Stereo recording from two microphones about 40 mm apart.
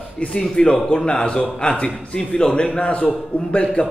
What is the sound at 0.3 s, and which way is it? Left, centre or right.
Speech, centre.